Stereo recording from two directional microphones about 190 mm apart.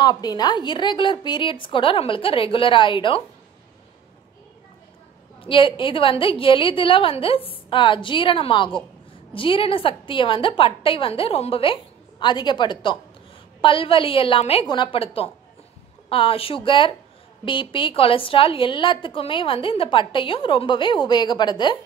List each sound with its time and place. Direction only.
0.0 s a woman's voice: 20° left (ahead or behind)
5.4 s a woman's voice: 25° left (ahead or behind)